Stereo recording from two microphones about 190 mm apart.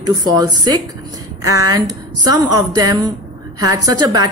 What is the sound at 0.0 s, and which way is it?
A woman's voice, 20° right (ahead or behind).